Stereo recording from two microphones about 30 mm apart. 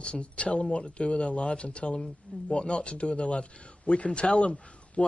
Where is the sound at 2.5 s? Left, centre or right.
Left.